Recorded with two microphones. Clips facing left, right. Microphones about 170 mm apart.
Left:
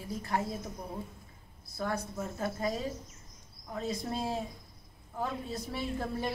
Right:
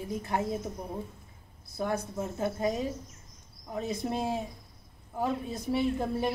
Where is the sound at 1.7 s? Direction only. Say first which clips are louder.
Right 3 dB; 20° right (ahead or behind).